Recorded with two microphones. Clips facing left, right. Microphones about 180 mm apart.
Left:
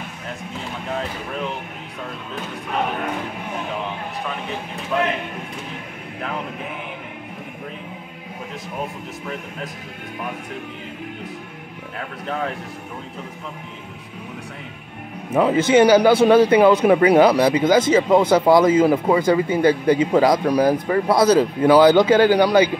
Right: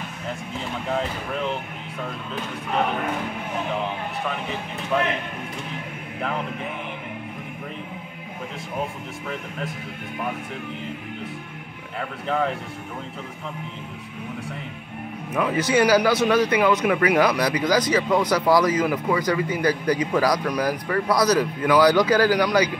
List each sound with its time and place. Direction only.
4.9 s a man's voice: 5° left (ahead or behind)
15.3 s speech: 30° left (ahead or behind)